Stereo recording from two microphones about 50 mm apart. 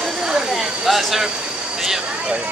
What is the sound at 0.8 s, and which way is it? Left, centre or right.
Speech, centre.